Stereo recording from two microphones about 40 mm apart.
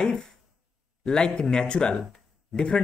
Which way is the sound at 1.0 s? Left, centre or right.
Left.